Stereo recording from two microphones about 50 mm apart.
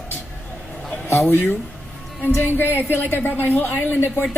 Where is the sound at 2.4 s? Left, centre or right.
Left.